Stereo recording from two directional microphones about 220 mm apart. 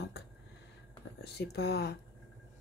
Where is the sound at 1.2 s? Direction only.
50° left (ahead or behind).